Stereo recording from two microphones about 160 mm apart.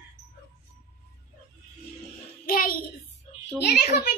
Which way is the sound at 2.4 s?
65° left (ahead or behind).